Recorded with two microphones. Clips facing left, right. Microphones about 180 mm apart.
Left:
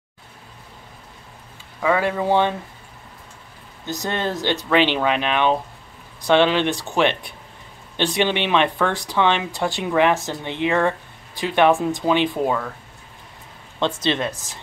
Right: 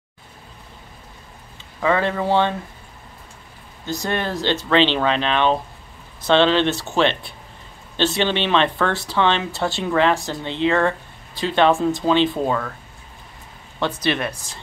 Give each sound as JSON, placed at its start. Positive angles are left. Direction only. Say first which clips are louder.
{"t": 1.8, "sound": "speech", "louder": "even", "side_deg": 10}
{"t": 3.8, "sound": "speech", "louder": "right 1 dB", "side_deg": 20}
{"t": 14.0, "sound": "speech", "louder": "even", "side_deg": 20}